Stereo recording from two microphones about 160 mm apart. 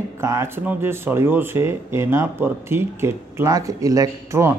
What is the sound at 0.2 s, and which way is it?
A man's voice, 15° right (ahead or behind).